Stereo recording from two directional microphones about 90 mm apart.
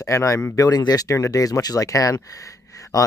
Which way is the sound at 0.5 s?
45° left (ahead or behind).